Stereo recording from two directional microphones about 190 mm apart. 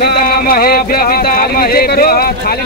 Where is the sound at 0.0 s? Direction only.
55° left (ahead or behind).